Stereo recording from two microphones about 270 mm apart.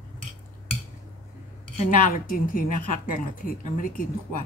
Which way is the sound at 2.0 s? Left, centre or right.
Left.